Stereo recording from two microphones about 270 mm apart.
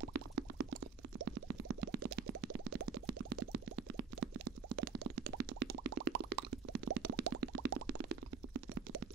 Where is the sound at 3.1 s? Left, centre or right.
Right.